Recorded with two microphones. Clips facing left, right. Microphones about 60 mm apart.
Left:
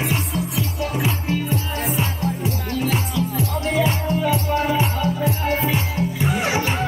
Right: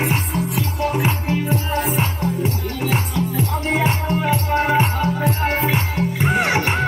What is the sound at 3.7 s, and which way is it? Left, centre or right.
Music, right.